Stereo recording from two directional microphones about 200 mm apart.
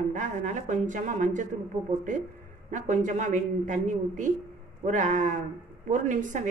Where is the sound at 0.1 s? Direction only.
40° right (ahead or behind).